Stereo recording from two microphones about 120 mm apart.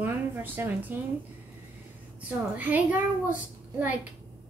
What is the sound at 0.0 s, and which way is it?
Speech, 15° right (ahead or behind).